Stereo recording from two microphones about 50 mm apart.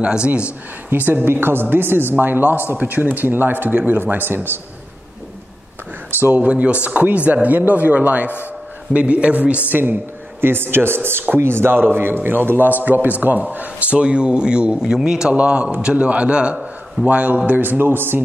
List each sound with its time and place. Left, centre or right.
0.0 s speech: right
0.8 s a woman's voice: right
6.3 s a man's voice: right
10.4 s a woman's voice: right
13.9 s a man's voice: right
15.3 s a man's voice: right